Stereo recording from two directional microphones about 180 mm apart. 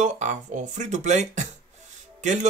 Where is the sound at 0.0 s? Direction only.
45° right (ahead or behind).